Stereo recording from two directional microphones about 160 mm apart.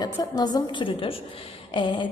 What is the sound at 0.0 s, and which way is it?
A woman's voice, 25° left (ahead or behind).